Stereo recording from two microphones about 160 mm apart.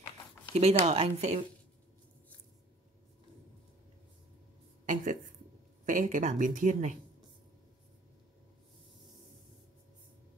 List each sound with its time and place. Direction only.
0.6 s speech: 40° right (ahead or behind)
4.8 s a sound: 55° right (ahead or behind)
5.9 s speech: 55° right (ahead or behind)